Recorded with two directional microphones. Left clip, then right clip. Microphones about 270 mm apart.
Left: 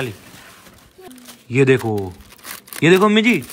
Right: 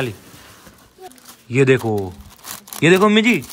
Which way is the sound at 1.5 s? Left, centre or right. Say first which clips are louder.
Even; centre.